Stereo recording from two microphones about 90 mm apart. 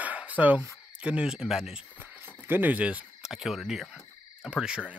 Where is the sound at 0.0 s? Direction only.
15° right (ahead or behind).